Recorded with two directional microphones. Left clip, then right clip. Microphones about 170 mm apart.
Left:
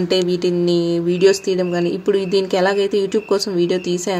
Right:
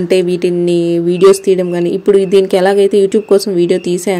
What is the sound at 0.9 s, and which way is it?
Speech, 30° right (ahead or behind).